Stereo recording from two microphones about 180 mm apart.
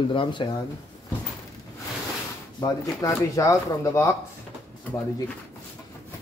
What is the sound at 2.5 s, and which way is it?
Speech, 20° left (ahead or behind).